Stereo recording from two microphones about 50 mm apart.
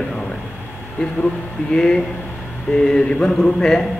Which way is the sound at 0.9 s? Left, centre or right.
Centre.